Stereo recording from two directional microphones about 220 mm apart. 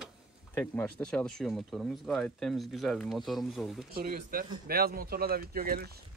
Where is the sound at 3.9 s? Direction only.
45° right (ahead or behind).